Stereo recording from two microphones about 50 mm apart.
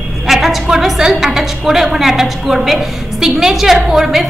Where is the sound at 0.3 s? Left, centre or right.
Centre.